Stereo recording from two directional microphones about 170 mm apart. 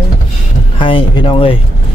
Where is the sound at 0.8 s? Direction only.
30° left (ahead or behind).